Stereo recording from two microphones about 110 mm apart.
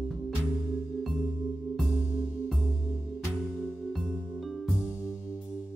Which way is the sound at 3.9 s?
Centre (ahead or behind).